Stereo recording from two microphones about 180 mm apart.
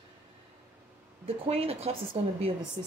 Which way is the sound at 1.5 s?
35° right (ahead or behind).